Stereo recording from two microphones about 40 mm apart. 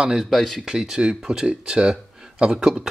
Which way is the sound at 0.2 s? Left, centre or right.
Centre.